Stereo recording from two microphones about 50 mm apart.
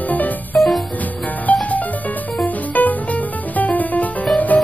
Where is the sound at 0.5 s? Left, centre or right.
Left.